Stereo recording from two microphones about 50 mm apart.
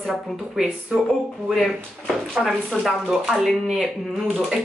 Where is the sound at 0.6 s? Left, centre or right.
Centre.